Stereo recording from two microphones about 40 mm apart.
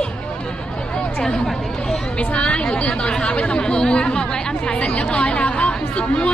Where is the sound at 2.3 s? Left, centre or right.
Left.